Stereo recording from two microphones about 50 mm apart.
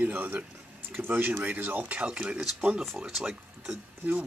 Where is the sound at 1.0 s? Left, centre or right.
Right.